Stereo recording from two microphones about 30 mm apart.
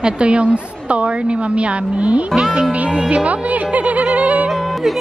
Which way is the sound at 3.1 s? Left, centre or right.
Right.